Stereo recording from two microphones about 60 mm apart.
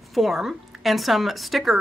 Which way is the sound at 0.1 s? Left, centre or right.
Centre.